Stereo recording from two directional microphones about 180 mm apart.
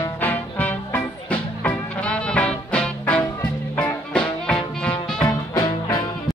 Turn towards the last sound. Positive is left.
turn(degrees=20)  # may be behind; listen again after turning